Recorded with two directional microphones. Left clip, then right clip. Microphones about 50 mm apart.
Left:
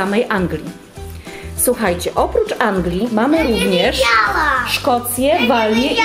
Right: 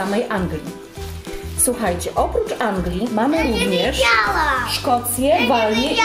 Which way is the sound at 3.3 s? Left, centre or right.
Centre.